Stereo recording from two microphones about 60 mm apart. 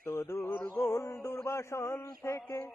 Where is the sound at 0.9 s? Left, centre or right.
Left.